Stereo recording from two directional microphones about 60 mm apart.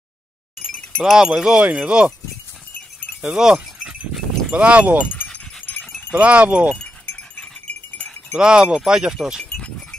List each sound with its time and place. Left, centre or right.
1.0 s speech: centre
1.6 s speech: right
3.2 s dog: centre
4.5 s speech: right
5.3 s dog: left
6.1 s speech: right
6.8 s sheep: left
8.3 s speech: centre
9.4 s goat: centre